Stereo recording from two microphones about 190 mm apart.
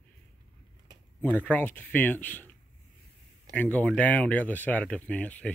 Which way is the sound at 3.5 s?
10° left (ahead or behind).